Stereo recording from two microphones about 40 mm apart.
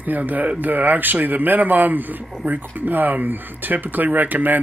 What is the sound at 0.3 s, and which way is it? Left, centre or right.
Speech, right.